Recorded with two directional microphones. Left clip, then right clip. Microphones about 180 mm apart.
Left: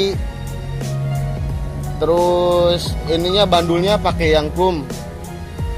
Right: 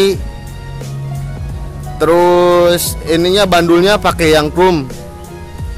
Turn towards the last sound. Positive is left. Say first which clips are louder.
# right 6 dB
turn(degrees=-60)  # may be behind; listen again after turning